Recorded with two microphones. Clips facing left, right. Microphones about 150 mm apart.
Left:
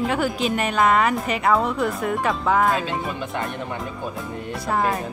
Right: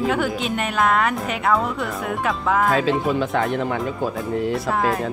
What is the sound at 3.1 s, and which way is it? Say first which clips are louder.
Speech: right 7 dB; 90° right.